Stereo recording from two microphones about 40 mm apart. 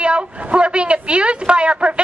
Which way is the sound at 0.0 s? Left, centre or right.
Right.